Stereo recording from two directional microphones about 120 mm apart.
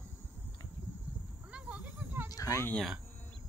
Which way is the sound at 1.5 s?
10° right (ahead or behind).